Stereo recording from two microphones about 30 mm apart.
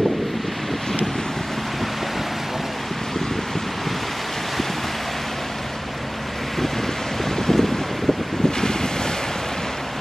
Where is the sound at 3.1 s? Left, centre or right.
Centre.